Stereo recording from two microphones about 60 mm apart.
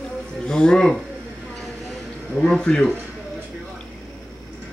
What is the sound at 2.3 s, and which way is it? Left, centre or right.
Speech, centre.